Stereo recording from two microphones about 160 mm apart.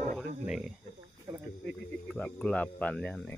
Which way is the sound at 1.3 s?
20° right (ahead or behind).